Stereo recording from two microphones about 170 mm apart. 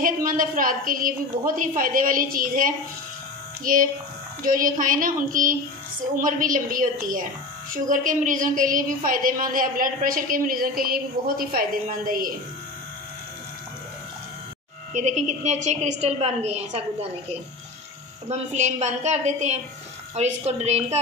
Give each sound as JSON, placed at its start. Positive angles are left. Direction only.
{"t": 0.0, "sound": "a woman's voice", "side_deg": -55}
{"t": 15.0, "sound": "a woman's voice", "side_deg": -45}
{"t": 18.3, "sound": "a woman's voice", "side_deg": -40}